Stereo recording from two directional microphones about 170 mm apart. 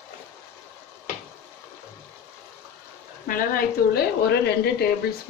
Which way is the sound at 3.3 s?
55° left (ahead or behind).